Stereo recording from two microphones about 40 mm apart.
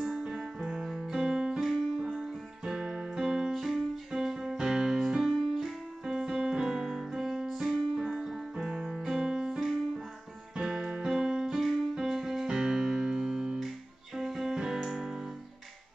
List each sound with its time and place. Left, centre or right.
0.2 s music: centre
0.9 s music: centre
1.6 s music: centre
2.7 s music: centre
4.1 s music: centre
6.0 s keyboard: centre
7.5 s music: centre
8.5 s music: centre
11.5 s music: centre
11.9 s music: centre